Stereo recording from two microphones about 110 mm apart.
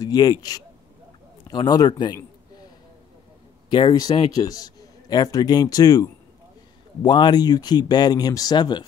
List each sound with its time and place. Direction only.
0.0 s speech: 35° left (ahead or behind)
3.7 s speech: 40° left (ahead or behind)